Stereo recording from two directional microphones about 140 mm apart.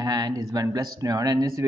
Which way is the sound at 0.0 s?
25° right (ahead or behind).